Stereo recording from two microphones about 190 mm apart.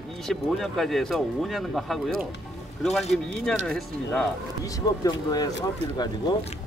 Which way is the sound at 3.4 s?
5° left (ahead or behind).